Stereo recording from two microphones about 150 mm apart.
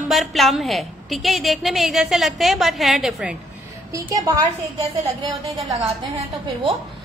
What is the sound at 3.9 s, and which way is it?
A woman's voice, 25° right (ahead or behind).